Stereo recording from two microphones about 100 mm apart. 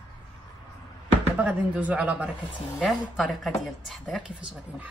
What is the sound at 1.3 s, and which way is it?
Speech, 15° right (ahead or behind).